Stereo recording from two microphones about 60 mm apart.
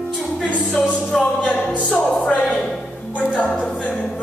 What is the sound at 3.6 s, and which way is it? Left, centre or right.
Music, left.